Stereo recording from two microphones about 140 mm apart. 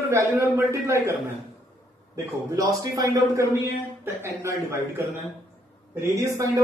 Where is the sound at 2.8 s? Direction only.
25° right (ahead or behind).